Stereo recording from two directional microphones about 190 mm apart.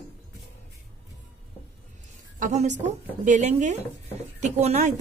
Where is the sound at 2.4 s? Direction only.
40° right (ahead or behind).